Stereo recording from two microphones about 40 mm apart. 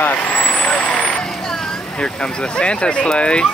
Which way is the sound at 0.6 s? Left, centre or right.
Left.